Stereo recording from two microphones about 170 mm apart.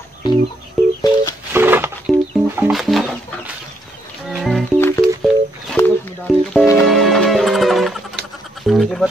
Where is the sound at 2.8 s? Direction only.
Centre (ahead or behind).